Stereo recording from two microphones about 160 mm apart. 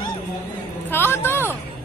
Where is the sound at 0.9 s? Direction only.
15° left (ahead or behind).